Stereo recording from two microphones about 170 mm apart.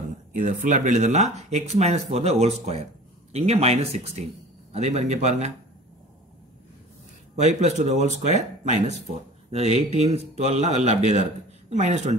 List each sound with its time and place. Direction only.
0.3 s speech: 50° right (ahead or behind)
7.3 s speech: 40° right (ahead or behind)